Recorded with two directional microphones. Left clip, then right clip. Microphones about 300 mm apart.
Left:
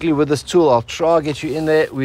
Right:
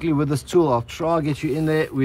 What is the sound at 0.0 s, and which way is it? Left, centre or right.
Speech, left.